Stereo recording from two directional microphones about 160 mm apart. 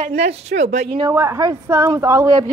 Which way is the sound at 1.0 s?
20° right (ahead or behind).